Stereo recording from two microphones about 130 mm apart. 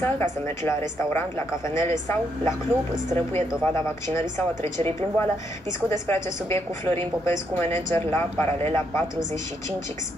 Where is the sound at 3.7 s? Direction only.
20° left (ahead or behind).